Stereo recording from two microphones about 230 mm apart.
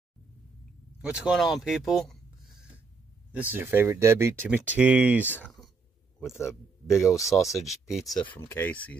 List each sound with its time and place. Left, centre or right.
1.0 s speech: centre
5.2 s speech: centre